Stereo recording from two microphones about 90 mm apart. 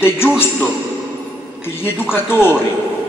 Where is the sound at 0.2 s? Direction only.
25° left (ahead or behind).